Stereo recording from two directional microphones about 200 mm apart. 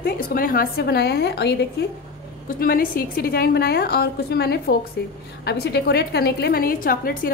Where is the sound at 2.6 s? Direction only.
45° left (ahead or behind).